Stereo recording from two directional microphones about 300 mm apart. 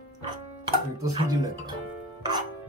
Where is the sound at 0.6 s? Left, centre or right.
Centre.